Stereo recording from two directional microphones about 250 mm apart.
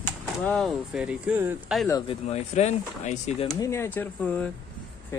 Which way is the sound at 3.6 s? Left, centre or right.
Centre.